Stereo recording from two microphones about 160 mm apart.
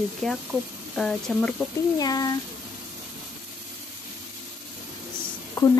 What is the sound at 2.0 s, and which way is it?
Speech, 25° left (ahead or behind).